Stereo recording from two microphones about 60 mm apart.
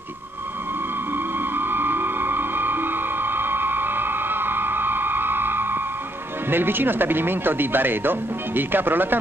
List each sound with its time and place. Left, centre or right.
1.1 s music: right
6.5 s speech: right